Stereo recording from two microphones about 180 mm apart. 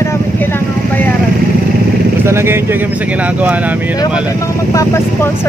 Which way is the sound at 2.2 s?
15° right (ahead or behind).